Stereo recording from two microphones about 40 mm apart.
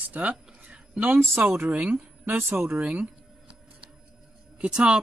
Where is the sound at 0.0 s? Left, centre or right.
Right.